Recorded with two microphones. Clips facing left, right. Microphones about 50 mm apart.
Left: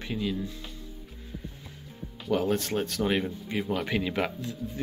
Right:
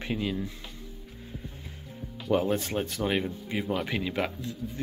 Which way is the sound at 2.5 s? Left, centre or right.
Centre.